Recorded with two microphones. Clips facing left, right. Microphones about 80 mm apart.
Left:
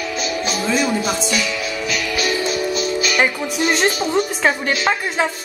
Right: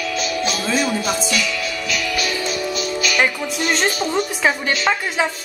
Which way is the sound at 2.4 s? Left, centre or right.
Centre.